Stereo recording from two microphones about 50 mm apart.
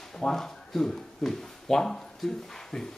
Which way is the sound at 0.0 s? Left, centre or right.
Centre.